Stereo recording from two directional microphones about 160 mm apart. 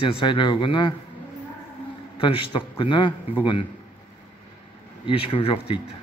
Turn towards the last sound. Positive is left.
turn(degrees=35)  # may be behind; listen again after turning